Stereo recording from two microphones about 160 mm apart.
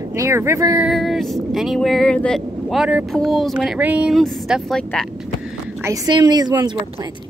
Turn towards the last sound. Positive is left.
turn(degrees=-25)  # may be behind; listen again after turning